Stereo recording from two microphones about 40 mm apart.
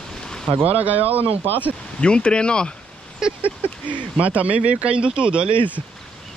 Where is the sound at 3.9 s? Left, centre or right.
Right.